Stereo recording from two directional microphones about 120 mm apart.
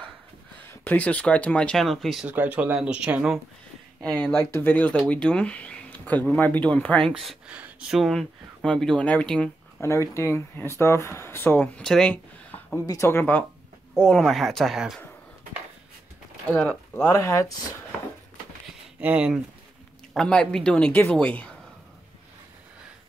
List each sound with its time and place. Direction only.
0.8 s speech: 10° left (ahead or behind)
2.2 s speech: 15° right (ahead or behind)
4.0 s speech: 10° left (ahead or behind)
4.4 s speech: 20° left (ahead or behind)
7.1 s speech: centre (ahead or behind)
9.8 s speech: 25° left (ahead or behind)
11.8 s speech: 5° left (ahead or behind)
12.7 s speech: 25° left (ahead or behind)
14.2 s speech: centre (ahead or behind)
16.5 s speech: 15° left (ahead or behind)
18.9 s speech: 10° right (ahead or behind)
20.2 s speech: 5° left (ahead or behind)